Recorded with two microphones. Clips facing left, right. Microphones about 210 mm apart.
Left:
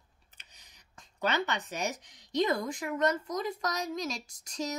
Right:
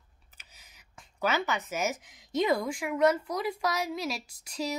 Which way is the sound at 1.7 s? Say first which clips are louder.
Right 3 dB; 5° right (ahead or behind).